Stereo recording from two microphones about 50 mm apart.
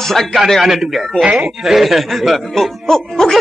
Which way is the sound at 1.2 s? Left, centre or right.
Right.